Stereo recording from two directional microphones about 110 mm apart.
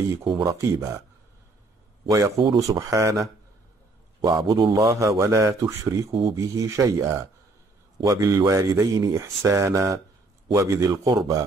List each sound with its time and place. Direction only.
0.4 s speech: 30° right (ahead or behind)
2.0 s speech: 30° right (ahead or behind)